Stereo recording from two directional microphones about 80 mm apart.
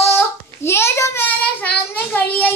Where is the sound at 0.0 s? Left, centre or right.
Left.